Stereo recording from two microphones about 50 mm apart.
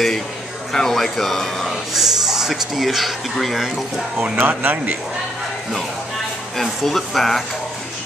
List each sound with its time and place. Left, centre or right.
0.7 s speech: centre
2.0 s speech: centre
4.4 s speech: right
6.5 s speech: centre